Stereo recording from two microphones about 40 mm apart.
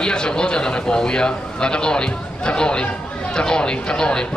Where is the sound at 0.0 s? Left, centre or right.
Centre.